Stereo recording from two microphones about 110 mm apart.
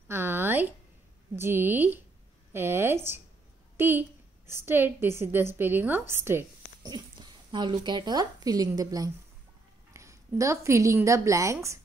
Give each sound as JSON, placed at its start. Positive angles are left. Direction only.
{"t": 0.1, "sound": "a sound", "side_deg": -20}
{"t": 1.3, "sound": "a woman's voice", "side_deg": -20}
{"t": 6.8, "sound": "a woman's voice", "side_deg": -40}